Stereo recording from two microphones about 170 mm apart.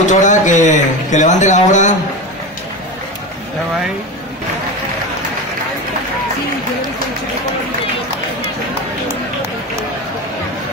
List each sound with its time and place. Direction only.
0.0 s a man's voice: 45° left (ahead or behind)